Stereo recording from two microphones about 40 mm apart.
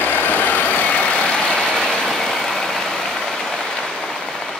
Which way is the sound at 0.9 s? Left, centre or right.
Left.